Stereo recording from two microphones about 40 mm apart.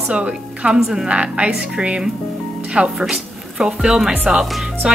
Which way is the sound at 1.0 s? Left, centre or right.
Right.